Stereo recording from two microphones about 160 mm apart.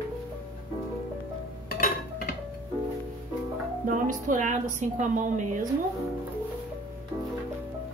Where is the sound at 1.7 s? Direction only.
70° left (ahead or behind).